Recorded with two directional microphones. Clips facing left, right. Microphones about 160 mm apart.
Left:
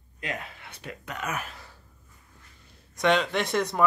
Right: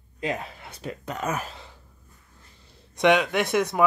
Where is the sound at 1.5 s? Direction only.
20° right (ahead or behind).